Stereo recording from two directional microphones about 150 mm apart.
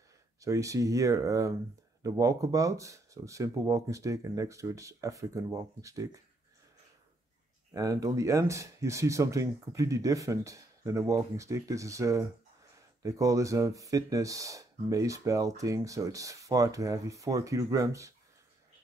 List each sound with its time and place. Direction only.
0.4 s speech: 20° right (ahead or behind)
7.7 s speech: 25° right (ahead or behind)